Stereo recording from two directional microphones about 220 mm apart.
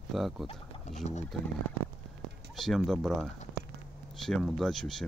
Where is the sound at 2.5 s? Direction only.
Centre (ahead or behind).